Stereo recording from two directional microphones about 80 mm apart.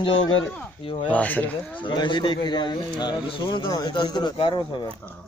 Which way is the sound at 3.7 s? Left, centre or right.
Left.